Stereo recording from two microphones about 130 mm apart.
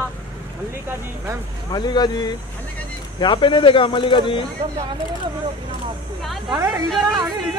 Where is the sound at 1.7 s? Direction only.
30° left (ahead or behind).